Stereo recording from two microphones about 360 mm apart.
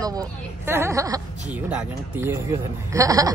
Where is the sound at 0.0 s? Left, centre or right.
Centre.